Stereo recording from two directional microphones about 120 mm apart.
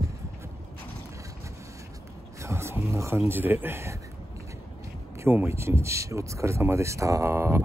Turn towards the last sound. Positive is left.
turn(degrees=-20)  # may be behind; listen again after turning